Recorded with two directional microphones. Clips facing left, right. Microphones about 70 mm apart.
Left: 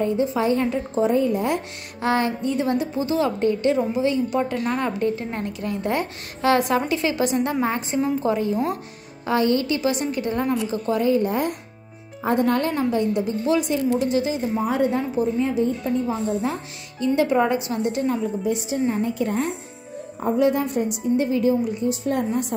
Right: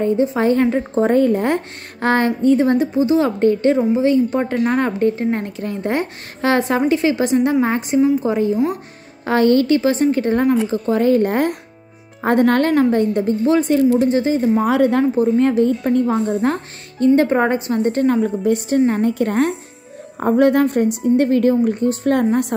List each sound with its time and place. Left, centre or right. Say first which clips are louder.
0.0 s a woman's voice: right 5 dB; right
0.4 s a woman's voice: right 5 dB; right
3.3 s a woman's voice: right 5 dB; right
9.2 s a woman's voice: right 6 dB; right
9.8 s a woman's voice: right 7 dB; right
11.1 s a woman's voice: right 6 dB; right
13.9 s a woman's voice: right 6 dB; right
14.6 s a woman's voice: right 7 dB; right
17.0 s a woman's voice: right 5 dB; right
18.7 s a woman's voice: right 7 dB; right